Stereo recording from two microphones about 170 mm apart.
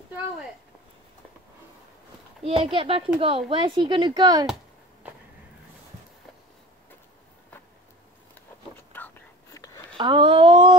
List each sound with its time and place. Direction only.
2.4 s speech: 30° right (ahead or behind)
8.9 s whispering: 10° left (ahead or behind)
9.9 s a sound: 30° right (ahead or behind)